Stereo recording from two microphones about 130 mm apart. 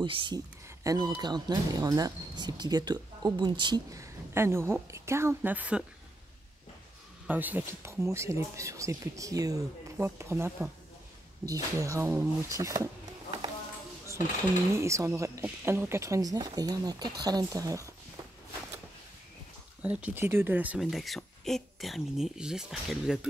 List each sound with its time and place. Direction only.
0.0 s speech: 40° right (ahead or behind); by 5.9 s 10° right (ahead or behind)
7.2 s speech: 15° right (ahead or behind)
14.8 s speech: 20° right (ahead or behind)
19.8 s speech: 10° right (ahead or behind)
20.8 s speech: centre (ahead or behind)